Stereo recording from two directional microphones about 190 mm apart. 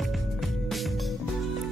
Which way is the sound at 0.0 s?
Centre (ahead or behind).